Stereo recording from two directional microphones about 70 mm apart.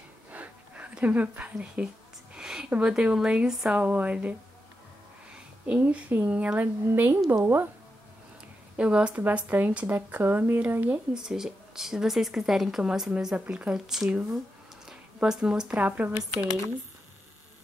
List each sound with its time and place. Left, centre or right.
0.3 s a sound: right
2.7 s a woman's voice: centre
3.8 s speech: right
5.7 s speech: centre
6.6 s a woman's voice: right
8.7 s a woman's voice: centre
11.1 s a woman's voice: centre
15.2 s a woman's voice: centre